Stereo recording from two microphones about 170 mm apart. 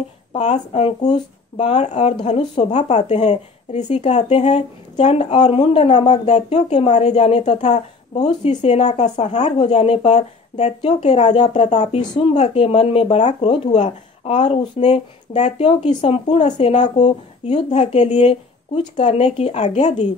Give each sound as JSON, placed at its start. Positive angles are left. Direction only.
{"t": 0.3, "sound": "a woman's voice", "side_deg": 40}
{"t": 17.0, "sound": "a woman's voice", "side_deg": 40}